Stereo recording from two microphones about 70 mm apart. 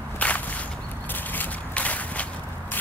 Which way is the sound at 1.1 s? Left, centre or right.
Left.